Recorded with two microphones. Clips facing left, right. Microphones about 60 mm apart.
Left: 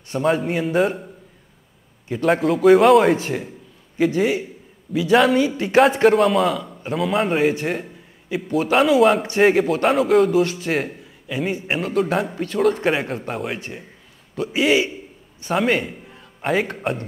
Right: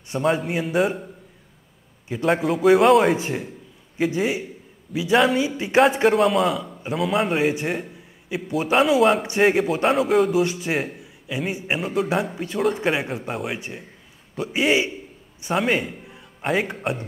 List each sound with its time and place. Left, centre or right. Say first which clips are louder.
0.2 s a man's voice: left 2 dB; centre
10.4 s speech: left 1 dB; centre
10.7 s a man's voice: left 2 dB; centre